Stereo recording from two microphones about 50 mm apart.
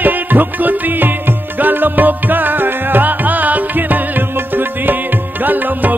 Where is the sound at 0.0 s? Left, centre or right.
Right.